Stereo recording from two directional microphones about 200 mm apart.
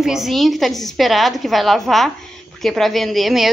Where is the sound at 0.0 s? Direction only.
Centre (ahead or behind).